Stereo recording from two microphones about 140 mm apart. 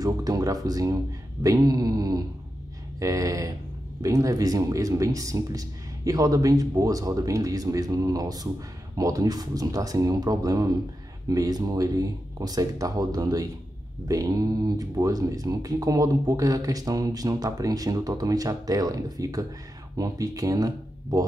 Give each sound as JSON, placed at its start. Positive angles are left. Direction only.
{"t": 0.0, "sound": "speech", "side_deg": -25}